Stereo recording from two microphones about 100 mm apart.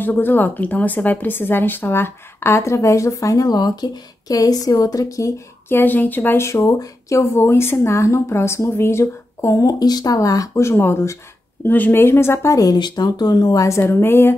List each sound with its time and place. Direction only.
0.0 s a woman's voice: 20° left (ahead or behind)